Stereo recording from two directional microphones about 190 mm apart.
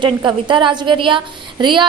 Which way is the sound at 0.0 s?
25° right (ahead or behind).